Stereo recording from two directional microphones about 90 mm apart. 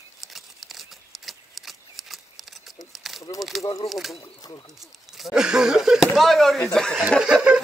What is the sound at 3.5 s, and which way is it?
Speech, centre (ahead or behind).